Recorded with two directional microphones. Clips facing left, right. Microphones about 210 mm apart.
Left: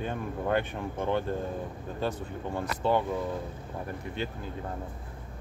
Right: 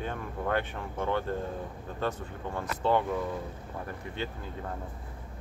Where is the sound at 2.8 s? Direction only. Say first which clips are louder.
Even; 10° left (ahead or behind).